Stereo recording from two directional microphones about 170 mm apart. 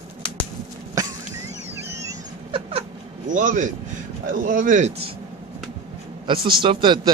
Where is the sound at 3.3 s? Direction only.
50° right (ahead or behind).